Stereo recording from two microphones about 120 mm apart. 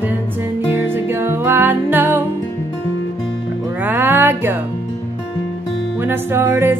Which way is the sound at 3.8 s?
15° right (ahead or behind).